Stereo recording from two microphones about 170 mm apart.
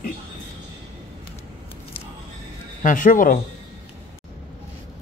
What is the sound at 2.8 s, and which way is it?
Speech, 50° left (ahead or behind).